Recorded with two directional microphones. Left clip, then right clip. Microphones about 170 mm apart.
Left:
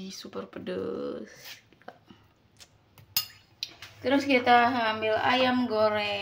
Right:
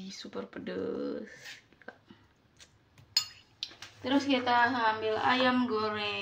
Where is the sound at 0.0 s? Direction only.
25° left (ahead or behind).